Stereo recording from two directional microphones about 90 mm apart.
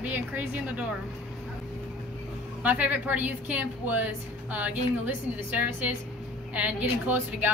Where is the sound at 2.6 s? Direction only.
15° right (ahead or behind).